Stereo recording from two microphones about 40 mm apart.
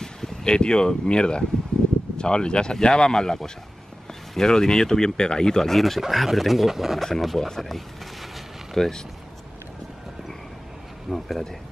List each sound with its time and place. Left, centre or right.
0.0 s speech: centre
5.8 s speech: centre
11.1 s speech: centre